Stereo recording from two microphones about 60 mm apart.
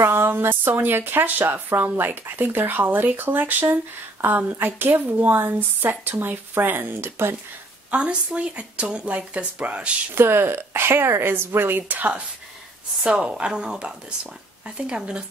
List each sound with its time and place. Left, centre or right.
0.0 s speech: right
7.9 s speech: centre
10.1 s speech: right
13.0 s a woman's voice: centre